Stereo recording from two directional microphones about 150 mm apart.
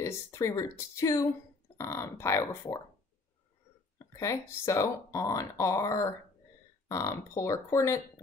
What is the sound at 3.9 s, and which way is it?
Speech, 20° left (ahead or behind).